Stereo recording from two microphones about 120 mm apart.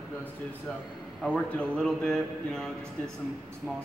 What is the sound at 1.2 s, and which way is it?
Speech, 10° left (ahead or behind).